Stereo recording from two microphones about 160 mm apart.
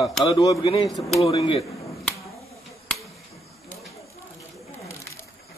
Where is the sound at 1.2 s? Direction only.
35° left (ahead or behind).